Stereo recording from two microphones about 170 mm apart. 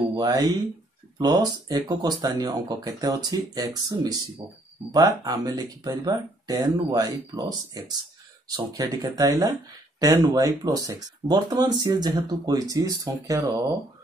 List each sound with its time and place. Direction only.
0.1 s speech: 20° right (ahead or behind)